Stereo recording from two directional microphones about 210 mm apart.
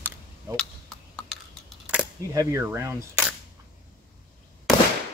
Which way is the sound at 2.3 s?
15° right (ahead or behind).